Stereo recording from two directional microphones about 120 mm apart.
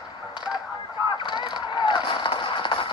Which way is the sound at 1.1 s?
40° left (ahead or behind).